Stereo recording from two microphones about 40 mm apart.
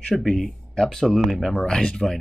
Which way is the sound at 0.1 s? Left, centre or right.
Centre.